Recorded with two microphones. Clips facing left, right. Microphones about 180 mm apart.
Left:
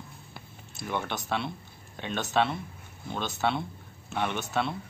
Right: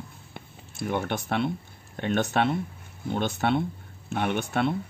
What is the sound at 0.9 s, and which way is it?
Speech, 50° right (ahead or behind).